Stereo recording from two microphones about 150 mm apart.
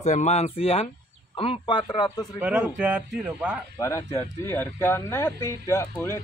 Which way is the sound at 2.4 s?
10° right (ahead or behind).